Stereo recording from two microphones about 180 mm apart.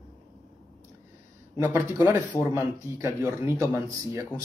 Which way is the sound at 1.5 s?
15° right (ahead or behind).